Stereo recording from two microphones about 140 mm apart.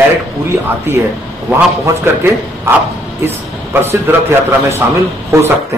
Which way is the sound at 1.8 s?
15° right (ahead or behind).